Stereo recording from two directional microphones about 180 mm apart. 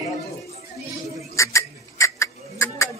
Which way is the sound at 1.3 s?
15° left (ahead or behind).